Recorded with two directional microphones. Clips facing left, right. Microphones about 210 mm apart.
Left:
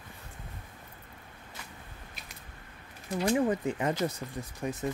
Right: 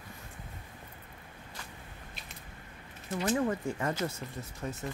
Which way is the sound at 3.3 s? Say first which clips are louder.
Left 3 dB; 20° left (ahead or behind).